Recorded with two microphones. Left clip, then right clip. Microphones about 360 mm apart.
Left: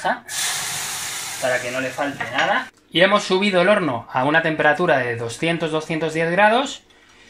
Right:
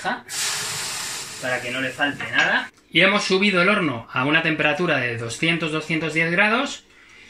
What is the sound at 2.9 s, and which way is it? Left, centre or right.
Speech, centre.